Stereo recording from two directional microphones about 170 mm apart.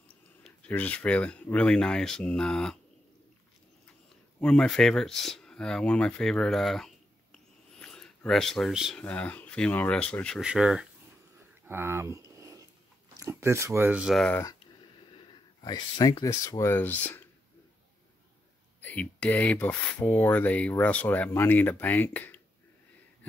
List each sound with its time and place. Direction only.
0.4 s speech: 10° left (ahead or behind)
4.4 s speech: 5° left (ahead or behind); by 12.2 s 15° right (ahead or behind)
12.4 s dog: 20° right (ahead or behind)
13.2 s speech: 15° right (ahead or behind); by 14.4 s 5° left (ahead or behind)
15.1 s speech: 25° left (ahead or behind)
18.8 s speech: 10° left (ahead or behind)